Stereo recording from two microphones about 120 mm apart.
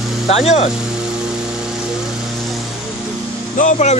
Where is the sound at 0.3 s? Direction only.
55° left (ahead or behind).